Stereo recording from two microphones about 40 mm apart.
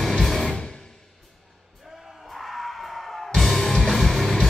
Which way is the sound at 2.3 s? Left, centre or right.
Centre.